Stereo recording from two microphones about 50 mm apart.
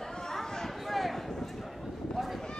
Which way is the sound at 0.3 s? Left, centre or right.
Centre.